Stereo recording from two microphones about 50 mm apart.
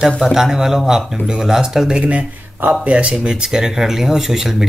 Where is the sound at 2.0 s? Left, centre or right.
Right.